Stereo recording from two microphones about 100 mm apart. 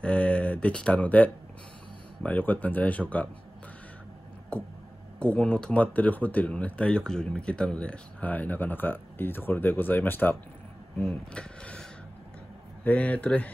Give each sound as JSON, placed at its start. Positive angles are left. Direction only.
{"t": 0.0, "sound": "speech", "side_deg": 10}
{"t": 5.2, "sound": "speech", "side_deg": 10}
{"t": 11.0, "sound": "speech", "side_deg": 10}